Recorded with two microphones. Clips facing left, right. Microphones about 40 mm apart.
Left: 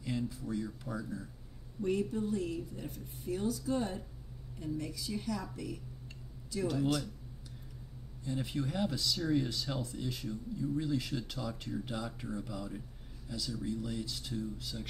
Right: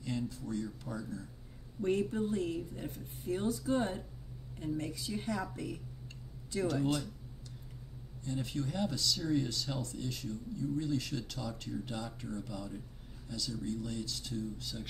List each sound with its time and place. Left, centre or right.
0.0 s speech: centre
1.8 s speech: right
6.8 s speech: right
8.3 s speech: centre